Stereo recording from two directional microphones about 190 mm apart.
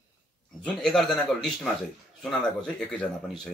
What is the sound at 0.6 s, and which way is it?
Speech, centre (ahead or behind).